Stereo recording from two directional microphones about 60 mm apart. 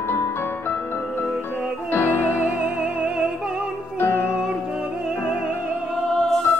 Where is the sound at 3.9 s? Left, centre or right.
Left.